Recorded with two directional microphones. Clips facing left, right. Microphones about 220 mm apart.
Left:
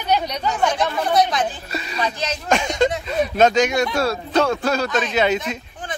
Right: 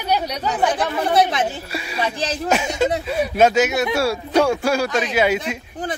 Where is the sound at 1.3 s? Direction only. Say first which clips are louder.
Right 1 dB; 25° right (ahead or behind).